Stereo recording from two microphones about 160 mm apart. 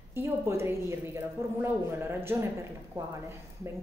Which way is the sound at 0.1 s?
15° right (ahead or behind).